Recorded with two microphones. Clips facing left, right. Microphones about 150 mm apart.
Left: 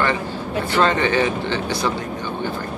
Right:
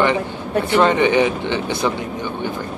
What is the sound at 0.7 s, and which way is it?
Speech, 15° right (ahead or behind).